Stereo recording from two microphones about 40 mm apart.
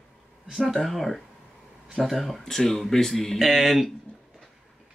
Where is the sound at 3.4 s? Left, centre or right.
Centre.